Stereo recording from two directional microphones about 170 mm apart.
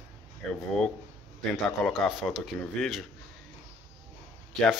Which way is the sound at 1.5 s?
5° left (ahead or behind).